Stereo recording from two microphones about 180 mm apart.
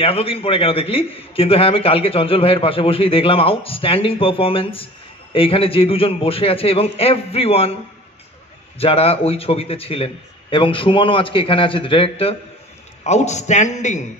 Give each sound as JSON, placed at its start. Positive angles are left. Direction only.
{"t": 0.0, "sound": "a man's voice", "side_deg": 30}
{"t": 8.7, "sound": "a man's voice", "side_deg": 35}